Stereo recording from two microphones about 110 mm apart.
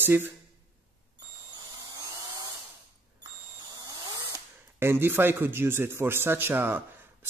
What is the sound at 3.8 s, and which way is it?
A man's voice, 25° right (ahead or behind).